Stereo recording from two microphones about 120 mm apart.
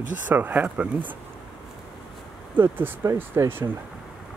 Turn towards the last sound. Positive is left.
turn(degrees=-20)  # may be behind; listen again after turning